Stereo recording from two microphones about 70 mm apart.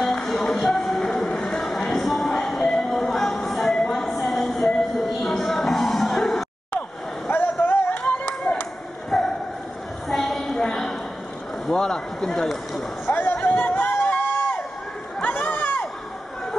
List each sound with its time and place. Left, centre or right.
0.1 s music: centre
0.6 s train: centre
1.8 s music: centre
2.0 s music: centre
7.2 s vehicle: left
8.0 s clapping: centre
9.1 s a sound: centre
12.7 s a sound: left